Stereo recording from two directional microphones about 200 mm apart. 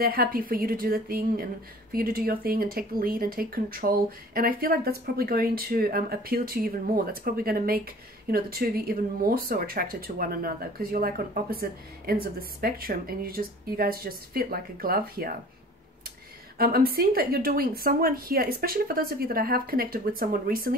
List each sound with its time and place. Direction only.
0.0 s speech: 50° right (ahead or behind)
16.5 s speech: 50° right (ahead or behind)